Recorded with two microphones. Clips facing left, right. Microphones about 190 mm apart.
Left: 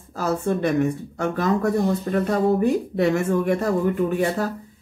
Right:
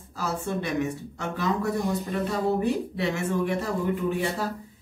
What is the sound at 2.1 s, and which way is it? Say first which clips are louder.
Speech: left 6 dB; 60° left (ahead or behind).